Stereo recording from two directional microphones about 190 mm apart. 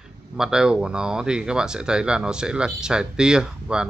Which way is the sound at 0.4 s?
5° right (ahead or behind).